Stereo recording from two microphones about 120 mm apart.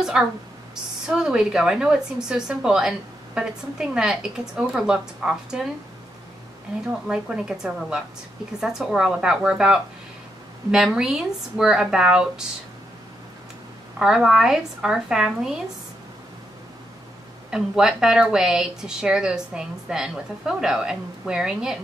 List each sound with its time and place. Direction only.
0.0 s speech: 5° right (ahead or behind)
6.9 s speech: 5° right (ahead or behind)
13.9 s speech: 5° right (ahead or behind)
17.5 s speech: 5° right (ahead or behind)